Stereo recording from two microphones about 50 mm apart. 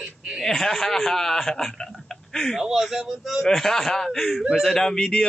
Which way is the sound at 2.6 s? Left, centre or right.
Centre.